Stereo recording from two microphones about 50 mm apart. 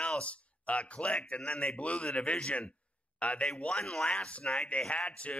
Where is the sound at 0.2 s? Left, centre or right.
Left.